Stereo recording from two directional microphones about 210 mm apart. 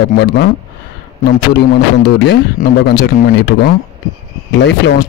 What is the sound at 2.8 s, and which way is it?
Speech, 50° left (ahead or behind).